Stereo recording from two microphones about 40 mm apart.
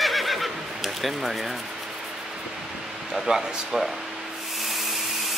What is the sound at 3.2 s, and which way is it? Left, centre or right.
Speech, centre.